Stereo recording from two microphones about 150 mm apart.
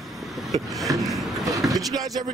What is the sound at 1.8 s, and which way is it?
Speech, 25° right (ahead or behind).